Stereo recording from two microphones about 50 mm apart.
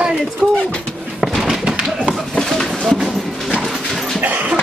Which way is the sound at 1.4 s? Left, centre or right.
Centre.